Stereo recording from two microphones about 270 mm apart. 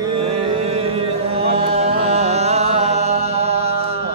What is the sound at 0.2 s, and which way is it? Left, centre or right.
Chant, right.